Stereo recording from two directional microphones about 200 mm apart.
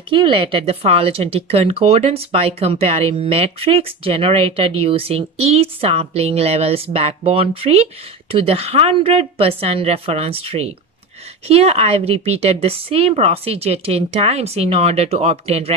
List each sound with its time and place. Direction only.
0.1 s a woman's voice: 25° right (ahead or behind)